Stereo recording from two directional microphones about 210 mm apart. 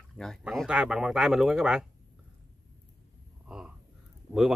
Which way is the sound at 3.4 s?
5° right (ahead or behind).